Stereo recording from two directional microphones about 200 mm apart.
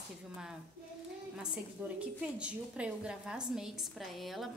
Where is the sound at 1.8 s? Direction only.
5° right (ahead or behind).